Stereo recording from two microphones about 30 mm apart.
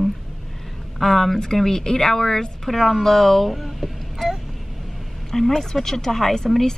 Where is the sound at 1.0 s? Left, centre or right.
Centre.